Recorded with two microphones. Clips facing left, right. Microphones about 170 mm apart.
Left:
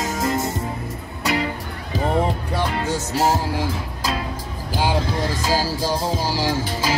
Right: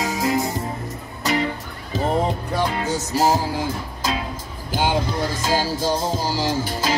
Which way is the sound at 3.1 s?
Centre (ahead or behind).